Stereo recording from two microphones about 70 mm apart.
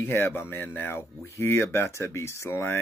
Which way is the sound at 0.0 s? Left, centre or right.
Left.